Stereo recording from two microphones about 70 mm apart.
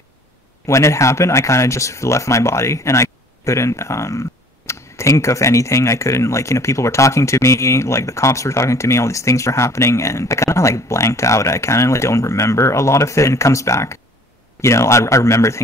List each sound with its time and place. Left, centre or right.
0.7 s speech: left